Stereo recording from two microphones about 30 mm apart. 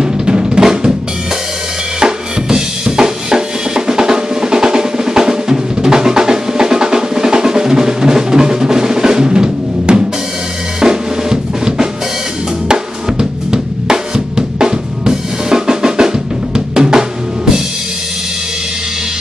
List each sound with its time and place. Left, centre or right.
0.0 s drum: right
2.0 s drum kit: centre
10.8 s drum: right
12.6 s drum kit: right
16.5 s drum: right